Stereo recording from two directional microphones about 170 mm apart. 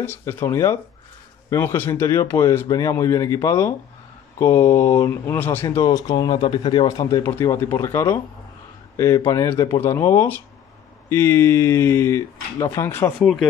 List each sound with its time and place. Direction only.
0.0 s speech: 15° left (ahead or behind)
13.2 s speech: centre (ahead or behind)